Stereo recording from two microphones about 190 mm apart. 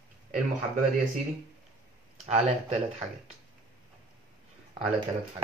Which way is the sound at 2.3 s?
40° right (ahead or behind).